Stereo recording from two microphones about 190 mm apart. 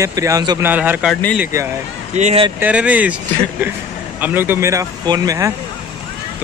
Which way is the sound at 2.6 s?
5° right (ahead or behind).